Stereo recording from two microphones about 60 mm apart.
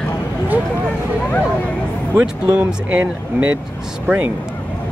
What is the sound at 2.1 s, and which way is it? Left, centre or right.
Speech, right.